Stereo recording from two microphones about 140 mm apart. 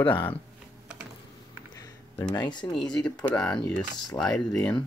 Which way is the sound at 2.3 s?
30° left (ahead or behind).